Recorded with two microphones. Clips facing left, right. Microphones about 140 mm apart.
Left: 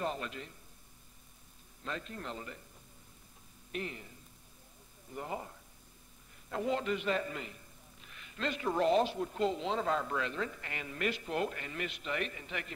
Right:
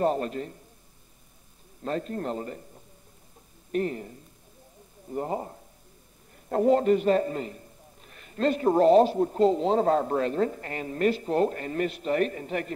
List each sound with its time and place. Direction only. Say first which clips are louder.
0.0 s a man's voice: right 12 dB; 45° right (ahead or behind)
1.8 s a man's voice: right 11 dB; 45° right (ahead or behind)
3.7 s a man's voice: right 12 dB; 45° right (ahead or behind)